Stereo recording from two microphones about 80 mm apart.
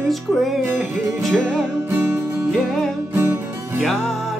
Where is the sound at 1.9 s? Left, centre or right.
Right.